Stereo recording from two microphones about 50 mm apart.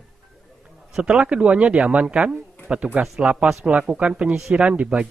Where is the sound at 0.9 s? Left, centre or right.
Centre.